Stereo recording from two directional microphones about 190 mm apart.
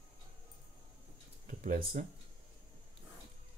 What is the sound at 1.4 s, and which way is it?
Speech, 45° right (ahead or behind).